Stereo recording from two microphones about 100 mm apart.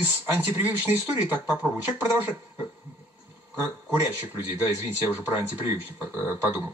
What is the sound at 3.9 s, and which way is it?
Speech, 20° right (ahead or behind).